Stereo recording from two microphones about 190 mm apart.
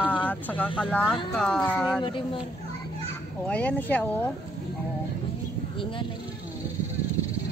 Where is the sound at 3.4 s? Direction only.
5° left (ahead or behind).